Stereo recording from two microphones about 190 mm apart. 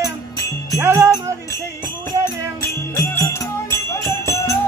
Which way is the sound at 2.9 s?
15° left (ahead or behind).